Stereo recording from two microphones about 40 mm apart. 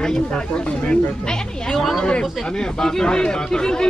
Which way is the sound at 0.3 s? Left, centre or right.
Left.